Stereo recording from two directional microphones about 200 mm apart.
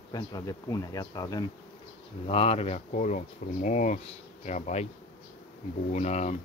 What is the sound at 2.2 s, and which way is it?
Speech, 30° left (ahead or behind).